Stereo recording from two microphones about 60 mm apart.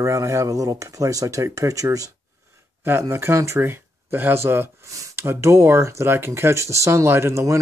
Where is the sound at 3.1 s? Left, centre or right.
Right.